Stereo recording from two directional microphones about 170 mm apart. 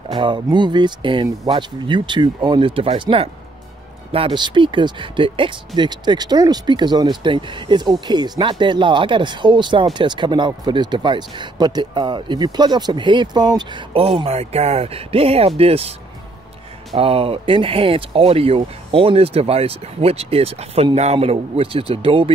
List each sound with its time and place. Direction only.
0.1 s speech: 30° right (ahead or behind)
16.9 s speech: 35° right (ahead or behind)